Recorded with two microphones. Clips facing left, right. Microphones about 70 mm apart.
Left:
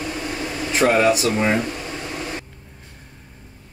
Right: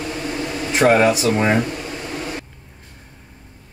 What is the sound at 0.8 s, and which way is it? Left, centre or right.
Speech, right.